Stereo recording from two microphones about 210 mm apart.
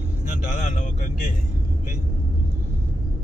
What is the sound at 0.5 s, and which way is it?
Speech, 35° left (ahead or behind).